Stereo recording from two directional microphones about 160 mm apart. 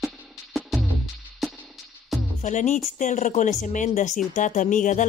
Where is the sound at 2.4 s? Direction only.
50° left (ahead or behind).